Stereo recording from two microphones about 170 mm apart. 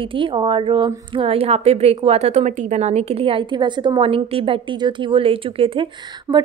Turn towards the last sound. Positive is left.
turn(degrees=-15)  # may be behind; listen again after turning